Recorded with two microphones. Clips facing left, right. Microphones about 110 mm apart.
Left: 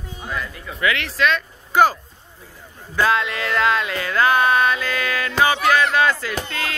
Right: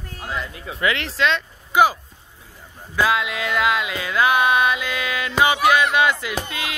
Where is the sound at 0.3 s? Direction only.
25° right (ahead or behind).